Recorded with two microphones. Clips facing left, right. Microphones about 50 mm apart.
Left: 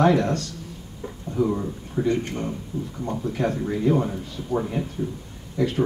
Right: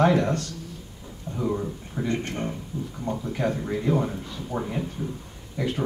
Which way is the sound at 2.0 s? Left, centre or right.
Right.